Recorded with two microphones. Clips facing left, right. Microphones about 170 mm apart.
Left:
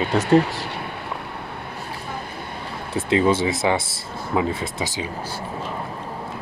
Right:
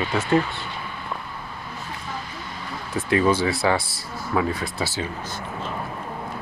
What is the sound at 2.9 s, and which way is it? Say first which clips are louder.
Speech: left 1 dB; 25° left (ahead or behind).